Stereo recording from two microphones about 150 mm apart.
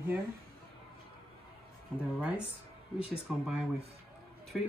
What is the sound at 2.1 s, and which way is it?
Speech, 10° right (ahead or behind).